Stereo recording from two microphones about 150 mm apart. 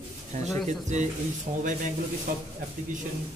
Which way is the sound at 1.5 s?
60° right (ahead or behind).